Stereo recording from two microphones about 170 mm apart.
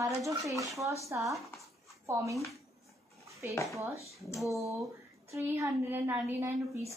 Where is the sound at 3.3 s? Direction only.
15° right (ahead or behind).